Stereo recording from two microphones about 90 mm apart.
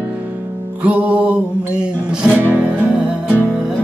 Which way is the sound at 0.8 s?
15° right (ahead or behind).